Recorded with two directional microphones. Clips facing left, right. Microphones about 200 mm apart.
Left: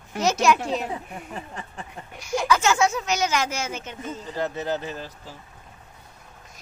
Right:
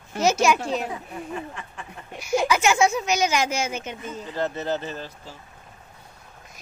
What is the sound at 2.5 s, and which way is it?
Speech, 10° right (ahead or behind).